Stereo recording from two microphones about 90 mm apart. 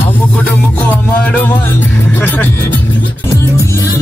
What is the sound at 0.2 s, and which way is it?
Music, 15° left (ahead or behind).